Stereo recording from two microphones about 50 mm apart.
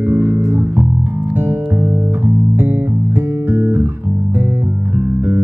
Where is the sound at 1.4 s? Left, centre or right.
Right.